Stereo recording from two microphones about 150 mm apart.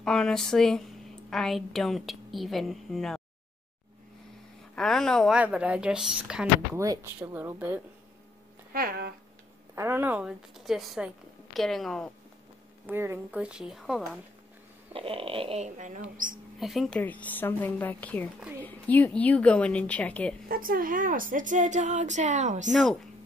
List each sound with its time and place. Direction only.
0.0 s a woman's voice: 5° left (ahead or behind)
4.7 s a woman's voice: 5° left (ahead or behind)
5.4 s speech: 10° right (ahead or behind)
6.8 s speech: 20° right (ahead or behind)
8.7 s speech: 85° right
9.8 s a woman's voice: 15° right (ahead or behind); by 12.1 s centre (ahead or behind)
12.8 s speech: 15° right (ahead or behind)
14.9 s speech: 35° right (ahead or behind); by 16.3 s 60° right (ahead or behind)
16.5 s a woman's voice: centre (ahead or behind)
17.0 s a woman's voice: 10° left (ahead or behind)
20.4 s a woman's voice: 75° right (ahead or behind); by 22.7 s 55° right (ahead or behind)
22.7 s a woman's voice: centre (ahead or behind)